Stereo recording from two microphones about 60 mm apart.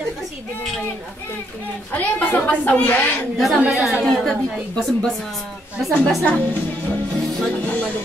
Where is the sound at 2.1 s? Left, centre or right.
Left.